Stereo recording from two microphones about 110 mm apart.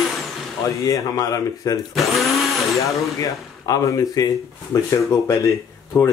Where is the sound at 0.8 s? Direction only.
35° left (ahead or behind).